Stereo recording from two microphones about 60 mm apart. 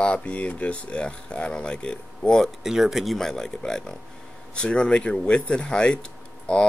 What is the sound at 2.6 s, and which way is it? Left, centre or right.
Speech, centre.